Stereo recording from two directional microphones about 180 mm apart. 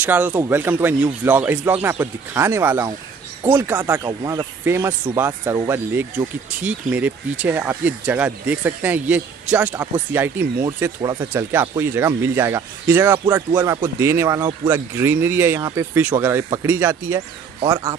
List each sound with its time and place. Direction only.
0.0 s speech: 10° right (ahead or behind)